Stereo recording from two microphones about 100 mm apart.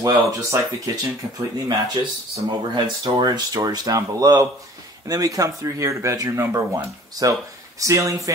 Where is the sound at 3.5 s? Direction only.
35° right (ahead or behind).